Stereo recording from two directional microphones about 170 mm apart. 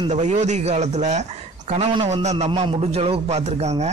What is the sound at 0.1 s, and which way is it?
A man's voice, 40° right (ahead or behind).